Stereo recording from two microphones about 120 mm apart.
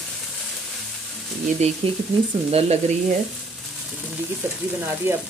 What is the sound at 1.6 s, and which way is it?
Frying, 65° right (ahead or behind).